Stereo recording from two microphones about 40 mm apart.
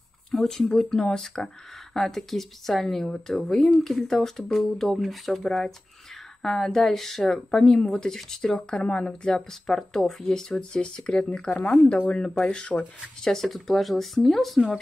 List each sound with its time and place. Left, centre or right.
0.3 s speech: centre
9.5 s speech: centre
13.2 s speech: centre